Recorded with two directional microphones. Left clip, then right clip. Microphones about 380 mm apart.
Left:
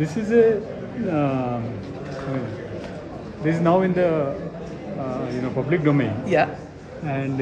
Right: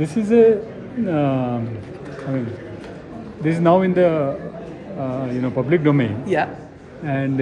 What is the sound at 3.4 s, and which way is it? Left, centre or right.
Speech, right.